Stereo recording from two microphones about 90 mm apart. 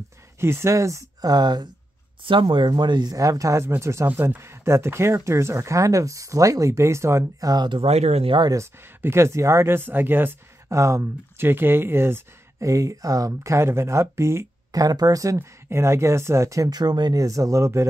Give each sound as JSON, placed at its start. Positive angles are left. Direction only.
{"t": 0.4, "sound": "speech", "side_deg": -30}
{"t": 2.2, "sound": "speech", "side_deg": -70}
{"t": 7.3, "sound": "speech", "side_deg": -45}
{"t": 9.0, "sound": "speech", "side_deg": -30}
{"t": 14.7, "sound": "speech", "side_deg": -45}
{"t": 15.3, "sound": "speech", "side_deg": -30}
{"t": 17.2, "sound": "speech", "side_deg": -40}